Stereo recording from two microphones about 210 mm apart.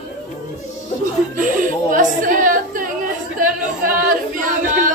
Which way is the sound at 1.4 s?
40° right (ahead or behind).